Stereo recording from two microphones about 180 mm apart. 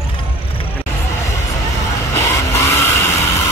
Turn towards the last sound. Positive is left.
turn(degrees=15)  # may be behind; listen again after turning